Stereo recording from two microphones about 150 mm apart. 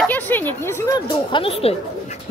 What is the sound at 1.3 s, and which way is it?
Speech, 40° left (ahead or behind).